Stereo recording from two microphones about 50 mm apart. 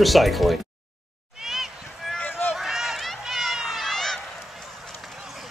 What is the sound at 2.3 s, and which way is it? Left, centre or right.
Run, left.